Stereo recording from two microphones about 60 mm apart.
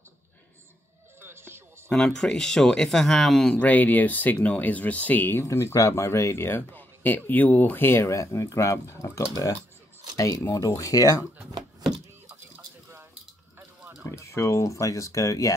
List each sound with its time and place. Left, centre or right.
1.2 s music: right
1.9 s speech: centre
3.5 s speech: left
5.4 s speech: left
14.0 s speech: left